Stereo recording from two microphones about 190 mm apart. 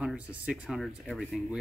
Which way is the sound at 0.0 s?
5° right (ahead or behind).